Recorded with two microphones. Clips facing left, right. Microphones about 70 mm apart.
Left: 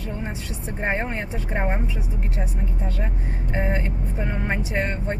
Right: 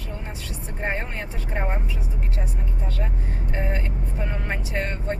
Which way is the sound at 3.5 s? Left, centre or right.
Left.